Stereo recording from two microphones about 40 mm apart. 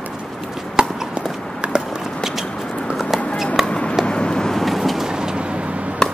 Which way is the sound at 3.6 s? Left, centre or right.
Left.